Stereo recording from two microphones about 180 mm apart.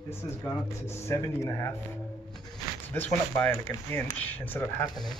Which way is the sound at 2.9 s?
10° left (ahead or behind).